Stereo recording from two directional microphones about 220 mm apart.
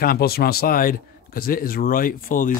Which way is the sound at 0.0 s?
45° left (ahead or behind).